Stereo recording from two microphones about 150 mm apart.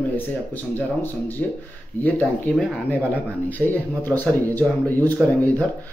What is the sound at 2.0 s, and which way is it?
Speech, 10° left (ahead or behind).